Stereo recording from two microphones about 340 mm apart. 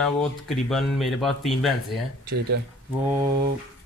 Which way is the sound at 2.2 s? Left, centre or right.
Right.